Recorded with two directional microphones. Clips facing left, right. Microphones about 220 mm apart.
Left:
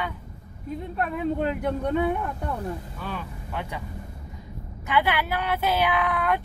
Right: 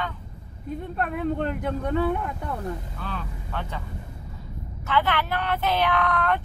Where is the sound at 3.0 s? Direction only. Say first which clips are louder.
Left 1 dB; 10° left (ahead or behind).